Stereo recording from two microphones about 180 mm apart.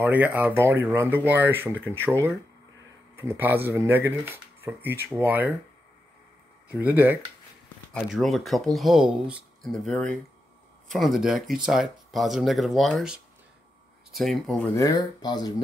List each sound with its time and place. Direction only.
0.0 s speech: 10° right (ahead or behind)
6.7 s speech: 10° right (ahead or behind)
7.9 s speech: centre (ahead or behind)
14.7 s speech: 20° left (ahead or behind)